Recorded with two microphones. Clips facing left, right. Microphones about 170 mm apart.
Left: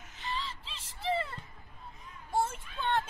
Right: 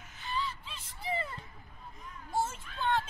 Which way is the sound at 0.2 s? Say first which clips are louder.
Right 2 dB; 90° left.